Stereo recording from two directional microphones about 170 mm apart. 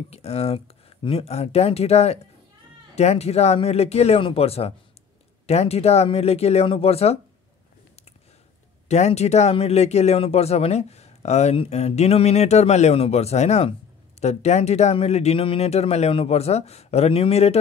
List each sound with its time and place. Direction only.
0.1 s speech: 40° left (ahead or behind)
8.8 s speech: 40° left (ahead or behind)